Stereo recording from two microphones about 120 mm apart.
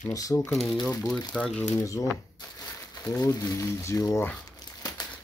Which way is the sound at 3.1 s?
30° left (ahead or behind).